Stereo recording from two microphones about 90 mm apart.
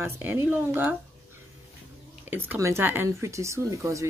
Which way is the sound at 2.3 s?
20° right (ahead or behind).